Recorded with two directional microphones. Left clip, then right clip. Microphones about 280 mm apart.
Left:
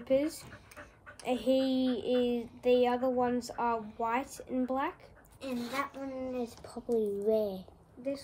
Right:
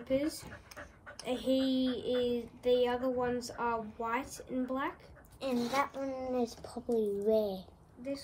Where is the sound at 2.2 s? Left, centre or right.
Left.